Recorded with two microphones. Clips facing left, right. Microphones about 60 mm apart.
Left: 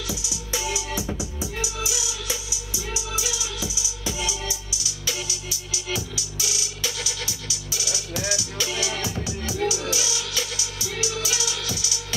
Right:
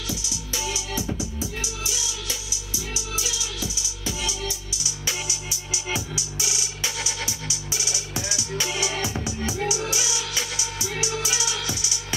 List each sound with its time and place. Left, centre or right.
0.1 s music: centre
5.0 s music: right